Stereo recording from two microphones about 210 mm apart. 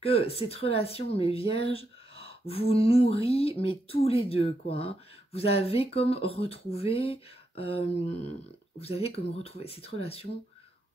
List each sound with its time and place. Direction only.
0.0 s speech: 30° left (ahead or behind)